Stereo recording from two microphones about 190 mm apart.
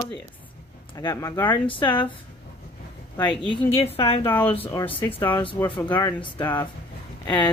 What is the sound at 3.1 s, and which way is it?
Speech, 10° left (ahead or behind).